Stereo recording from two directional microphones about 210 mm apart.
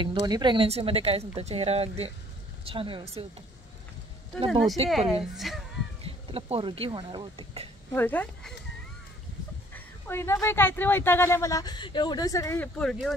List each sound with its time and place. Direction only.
0.3 s speech: 20° right (ahead or behind)
4.5 s speech: centre (ahead or behind)
6.0 s speech: 25° right (ahead or behind)
7.9 s speech: 10° left (ahead or behind)
9.8 s speech: 10° left (ahead or behind)